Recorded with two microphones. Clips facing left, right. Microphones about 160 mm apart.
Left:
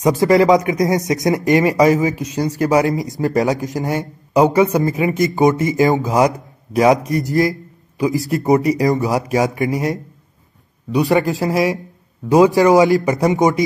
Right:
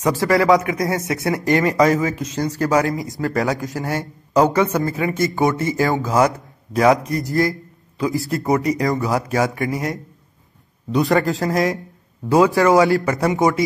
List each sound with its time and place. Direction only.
0.0 s speech: 20° left (ahead or behind)